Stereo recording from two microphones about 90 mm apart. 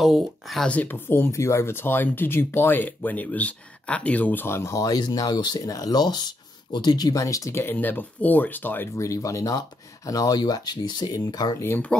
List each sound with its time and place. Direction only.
0.0 s speech: centre (ahead or behind)
0.7 s speech: 20° left (ahead or behind); by 7.5 s 40° left (ahead or behind)
7.5 s speech: 25° left (ahead or behind)
8.9 s speech: 35° left (ahead or behind)